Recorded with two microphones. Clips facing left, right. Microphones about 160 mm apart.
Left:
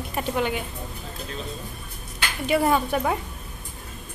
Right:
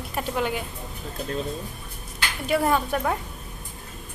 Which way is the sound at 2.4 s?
Centre (ahead or behind).